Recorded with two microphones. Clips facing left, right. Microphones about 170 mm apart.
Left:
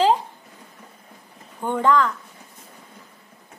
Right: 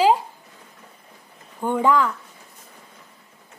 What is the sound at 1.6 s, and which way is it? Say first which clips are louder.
Speech: even; 10° right (ahead or behind).